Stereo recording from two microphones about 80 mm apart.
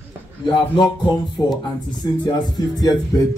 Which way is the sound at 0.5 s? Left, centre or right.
Left.